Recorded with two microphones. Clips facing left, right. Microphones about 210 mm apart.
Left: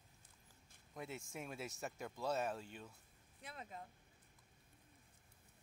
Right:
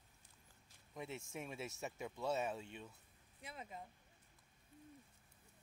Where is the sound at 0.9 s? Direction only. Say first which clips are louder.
Right 1 dB; centre (ahead or behind).